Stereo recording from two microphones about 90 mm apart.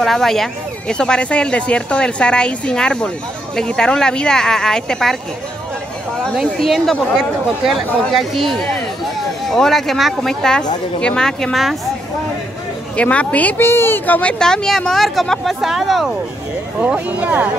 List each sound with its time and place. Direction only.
0.0 s speech: 5° left (ahead or behind)
6.3 s speech: centre (ahead or behind)
12.9 s speech: 15° left (ahead or behind)
14.4 s speech: 5° left (ahead or behind)
16.8 s speech: 15° right (ahead or behind)